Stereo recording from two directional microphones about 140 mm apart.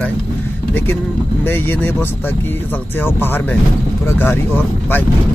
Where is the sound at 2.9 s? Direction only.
15° left (ahead or behind).